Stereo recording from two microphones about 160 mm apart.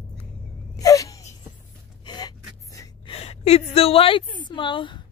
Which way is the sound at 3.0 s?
40° left (ahead or behind).